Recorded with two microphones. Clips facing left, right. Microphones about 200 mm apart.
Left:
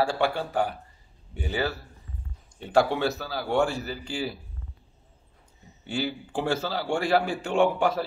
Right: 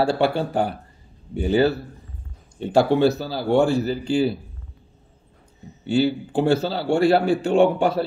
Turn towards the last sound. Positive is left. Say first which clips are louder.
# right 5 dB
turn(degrees=-30)  # may be behind; listen again after turning